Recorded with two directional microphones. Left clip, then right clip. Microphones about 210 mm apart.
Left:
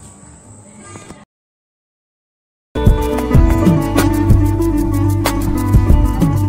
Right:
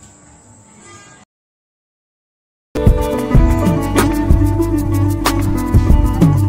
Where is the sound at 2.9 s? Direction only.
Centre (ahead or behind).